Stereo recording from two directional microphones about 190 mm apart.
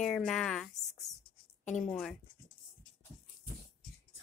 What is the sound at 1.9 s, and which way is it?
Speech, 5° left (ahead or behind).